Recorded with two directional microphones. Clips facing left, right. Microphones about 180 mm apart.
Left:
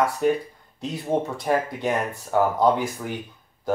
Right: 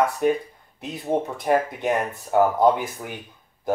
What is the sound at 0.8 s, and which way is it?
Speech, 20° right (ahead or behind).